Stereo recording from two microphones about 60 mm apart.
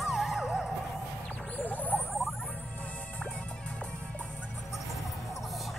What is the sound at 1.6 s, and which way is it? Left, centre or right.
Rodents, left.